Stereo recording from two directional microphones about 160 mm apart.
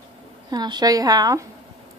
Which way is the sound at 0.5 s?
25° right (ahead or behind).